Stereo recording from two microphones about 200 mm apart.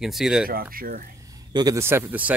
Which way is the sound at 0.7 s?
45° right (ahead or behind).